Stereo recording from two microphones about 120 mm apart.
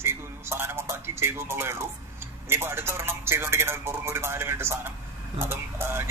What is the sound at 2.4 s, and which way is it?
Speech, 20° right (ahead or behind).